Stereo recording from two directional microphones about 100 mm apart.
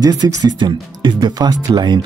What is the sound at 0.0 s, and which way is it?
Speech, 40° right (ahead or behind).